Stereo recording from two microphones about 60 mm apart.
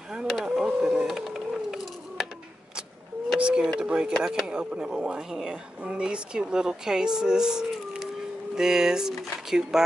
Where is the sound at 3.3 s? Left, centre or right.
Centre.